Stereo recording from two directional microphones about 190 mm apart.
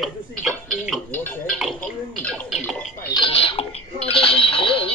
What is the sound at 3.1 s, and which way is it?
Dishes, 25° left (ahead or behind).